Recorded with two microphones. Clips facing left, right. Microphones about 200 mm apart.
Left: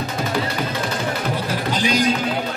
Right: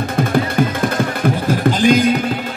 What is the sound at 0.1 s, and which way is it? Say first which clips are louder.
Music: right 9 dB; 55° right (ahead or behind).